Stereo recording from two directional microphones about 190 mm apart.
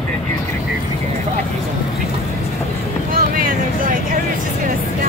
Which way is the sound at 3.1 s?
45° right (ahead or behind).